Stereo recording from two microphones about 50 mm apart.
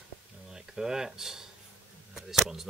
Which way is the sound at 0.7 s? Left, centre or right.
Centre.